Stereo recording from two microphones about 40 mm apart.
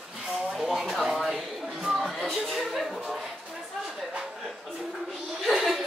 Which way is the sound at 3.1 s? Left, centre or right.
Centre.